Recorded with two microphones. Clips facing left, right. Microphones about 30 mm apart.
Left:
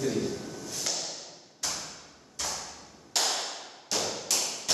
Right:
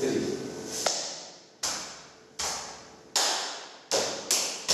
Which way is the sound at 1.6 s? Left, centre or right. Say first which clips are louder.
Right 1 dB; centre.